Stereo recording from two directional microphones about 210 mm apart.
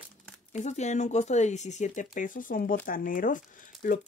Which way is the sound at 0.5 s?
35° left (ahead or behind).